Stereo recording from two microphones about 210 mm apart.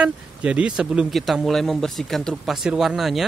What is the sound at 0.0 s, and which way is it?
Speech, 5° right (ahead or behind).